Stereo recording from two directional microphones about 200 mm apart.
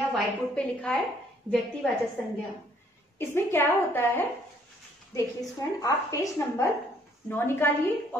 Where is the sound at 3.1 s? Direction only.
10° left (ahead or behind).